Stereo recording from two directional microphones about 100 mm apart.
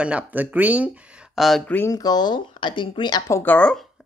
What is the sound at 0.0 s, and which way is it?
Speech, 15° right (ahead or behind).